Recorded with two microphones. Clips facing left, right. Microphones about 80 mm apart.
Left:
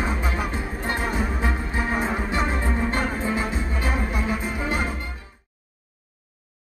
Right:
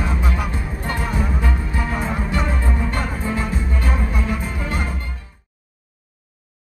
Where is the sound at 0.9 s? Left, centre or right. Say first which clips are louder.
Right 2 dB; left.